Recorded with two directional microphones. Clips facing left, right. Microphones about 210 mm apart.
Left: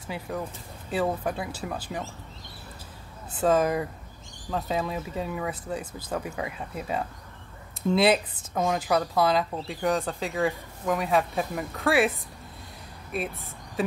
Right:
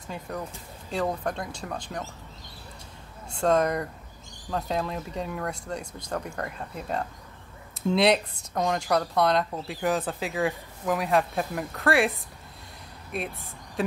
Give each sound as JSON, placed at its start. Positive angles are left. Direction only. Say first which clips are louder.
{"t": 0.0, "sound": "speech", "louder": "left 2 dB", "side_deg": 5}
{"t": 3.3, "sound": "speech", "louder": "even", "side_deg": 5}